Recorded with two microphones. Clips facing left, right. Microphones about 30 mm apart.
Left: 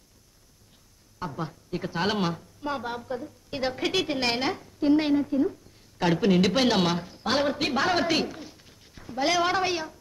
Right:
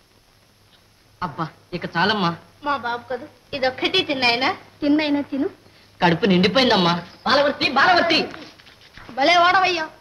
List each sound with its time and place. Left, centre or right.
1.2 s a woman's voice: right